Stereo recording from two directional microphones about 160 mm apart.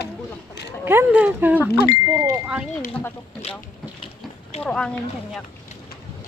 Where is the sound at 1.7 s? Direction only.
85° left.